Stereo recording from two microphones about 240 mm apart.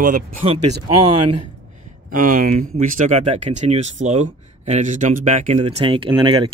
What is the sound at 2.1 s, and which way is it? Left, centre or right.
Speech, right.